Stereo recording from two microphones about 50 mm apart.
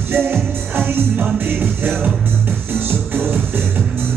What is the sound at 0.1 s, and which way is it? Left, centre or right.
Music, right.